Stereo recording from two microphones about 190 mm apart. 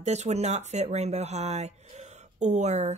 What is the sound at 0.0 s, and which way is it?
Speech, 35° right (ahead or behind).